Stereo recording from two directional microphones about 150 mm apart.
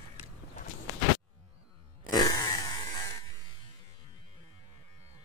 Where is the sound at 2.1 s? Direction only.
25° left (ahead or behind).